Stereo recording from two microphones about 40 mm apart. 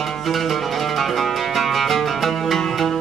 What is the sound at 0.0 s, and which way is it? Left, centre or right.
Music, centre.